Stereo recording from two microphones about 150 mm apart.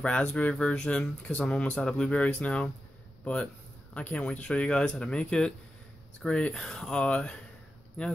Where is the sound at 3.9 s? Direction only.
10° left (ahead or behind).